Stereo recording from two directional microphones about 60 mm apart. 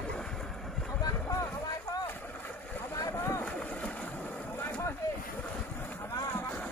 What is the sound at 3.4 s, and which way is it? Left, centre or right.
Boat, left.